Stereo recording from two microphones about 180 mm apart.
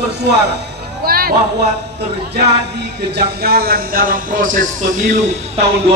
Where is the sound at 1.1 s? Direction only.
55° right (ahead or behind).